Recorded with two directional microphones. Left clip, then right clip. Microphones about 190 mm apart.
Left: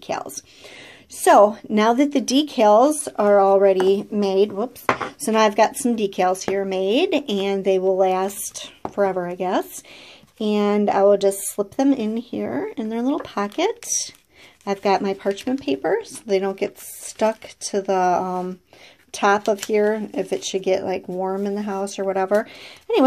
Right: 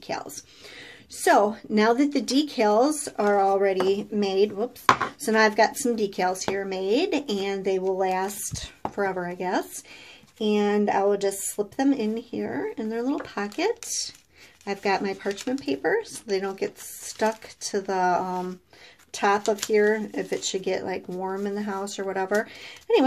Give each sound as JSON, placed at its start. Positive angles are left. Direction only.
{"t": 0.0, "sound": "speech", "side_deg": 30}